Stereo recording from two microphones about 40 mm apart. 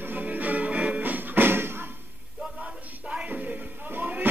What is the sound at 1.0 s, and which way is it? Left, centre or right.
Music, right.